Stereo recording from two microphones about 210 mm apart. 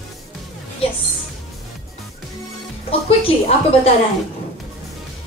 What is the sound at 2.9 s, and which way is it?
Speech, 25° left (ahead or behind).